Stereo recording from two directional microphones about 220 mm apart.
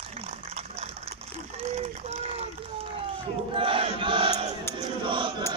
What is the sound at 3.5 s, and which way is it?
Chant, 25° right (ahead or behind).